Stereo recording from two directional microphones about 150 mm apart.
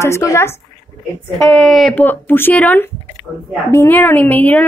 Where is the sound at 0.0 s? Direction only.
20° left (ahead or behind).